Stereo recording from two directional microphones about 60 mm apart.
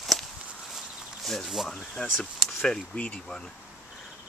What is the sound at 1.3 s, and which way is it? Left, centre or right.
Speech, centre.